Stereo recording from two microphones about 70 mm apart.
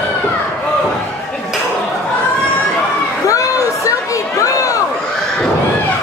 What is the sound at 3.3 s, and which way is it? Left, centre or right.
Chatter, left.